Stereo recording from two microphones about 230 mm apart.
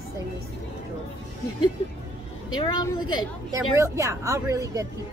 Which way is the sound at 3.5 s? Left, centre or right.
Centre.